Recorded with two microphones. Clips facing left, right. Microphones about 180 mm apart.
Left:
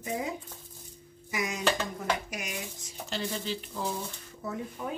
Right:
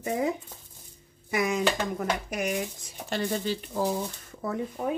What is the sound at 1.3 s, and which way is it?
Speech, 60° right (ahead or behind).